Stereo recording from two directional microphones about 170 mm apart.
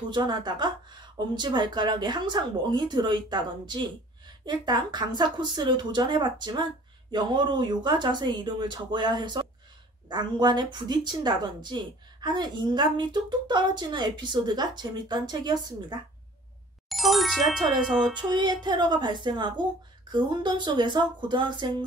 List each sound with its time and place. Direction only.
0.1 s a woman's voice: 25° right (ahead or behind)
16.9 s speech: centre (ahead or behind)
18.3 s a woman's voice: 25° right (ahead or behind)